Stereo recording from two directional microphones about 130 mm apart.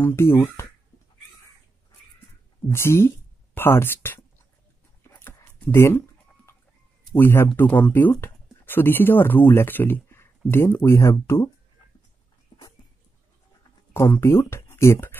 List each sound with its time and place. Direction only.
0.0 s speech: 20° left (ahead or behind)
2.7 s speech: 20° left (ahead or behind)
5.1 s a sound: 15° left (ahead or behind)
7.2 s speech: 15° left (ahead or behind)
12.5 s dog: 40° left (ahead or behind)
13.9 s speech: 20° left (ahead or behind)